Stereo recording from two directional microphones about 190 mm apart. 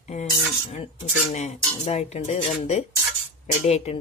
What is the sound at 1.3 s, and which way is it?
Speech, 35° left (ahead or behind).